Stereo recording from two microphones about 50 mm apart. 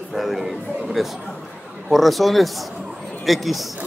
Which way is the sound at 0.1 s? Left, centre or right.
Centre.